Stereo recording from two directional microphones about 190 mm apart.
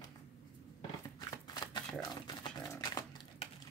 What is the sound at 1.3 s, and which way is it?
Typewriter, 20° left (ahead or behind).